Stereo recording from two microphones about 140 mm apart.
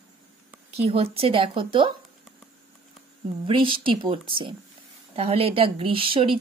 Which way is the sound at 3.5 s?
40° right (ahead or behind).